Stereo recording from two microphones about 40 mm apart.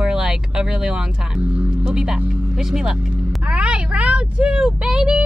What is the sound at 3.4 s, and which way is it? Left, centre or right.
Speech, right.